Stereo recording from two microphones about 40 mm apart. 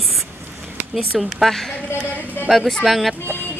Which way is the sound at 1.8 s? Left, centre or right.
Left.